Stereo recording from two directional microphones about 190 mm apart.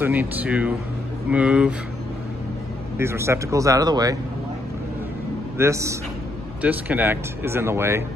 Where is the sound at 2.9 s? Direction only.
15° right (ahead or behind).